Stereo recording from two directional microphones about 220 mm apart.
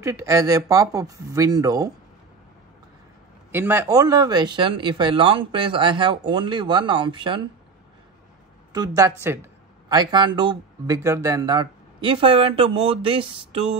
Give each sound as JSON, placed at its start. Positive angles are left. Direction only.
{"t": 0.0, "sound": "speech", "side_deg": -15}
{"t": 3.5, "sound": "speech", "side_deg": -10}
{"t": 8.7, "sound": "speech", "side_deg": -15}